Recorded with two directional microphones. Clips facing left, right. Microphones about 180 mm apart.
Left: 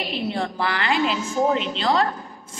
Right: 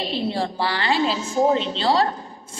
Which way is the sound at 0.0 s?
30° right (ahead or behind).